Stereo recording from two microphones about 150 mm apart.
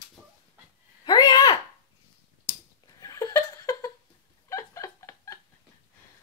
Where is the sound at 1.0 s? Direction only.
25° left (ahead or behind).